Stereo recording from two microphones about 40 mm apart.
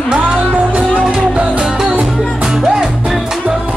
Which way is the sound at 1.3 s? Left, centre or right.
Right.